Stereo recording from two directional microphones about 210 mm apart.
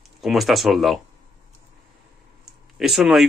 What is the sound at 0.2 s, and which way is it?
Speech, centre (ahead or behind).